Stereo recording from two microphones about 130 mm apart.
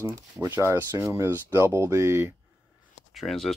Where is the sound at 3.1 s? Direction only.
Centre (ahead or behind).